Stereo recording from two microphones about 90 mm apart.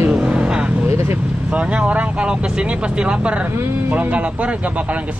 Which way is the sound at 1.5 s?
15° right (ahead or behind).